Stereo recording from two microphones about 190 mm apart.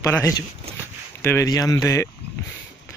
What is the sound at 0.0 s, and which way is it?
Speech, 15° left (ahead or behind).